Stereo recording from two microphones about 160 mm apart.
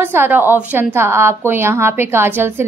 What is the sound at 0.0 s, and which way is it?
A woman's voice, 15° right (ahead or behind).